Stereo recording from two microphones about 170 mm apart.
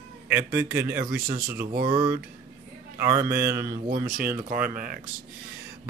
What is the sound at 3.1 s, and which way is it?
Speech, 15° right (ahead or behind).